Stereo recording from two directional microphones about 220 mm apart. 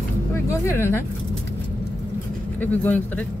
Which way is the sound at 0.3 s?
10° left (ahead or behind).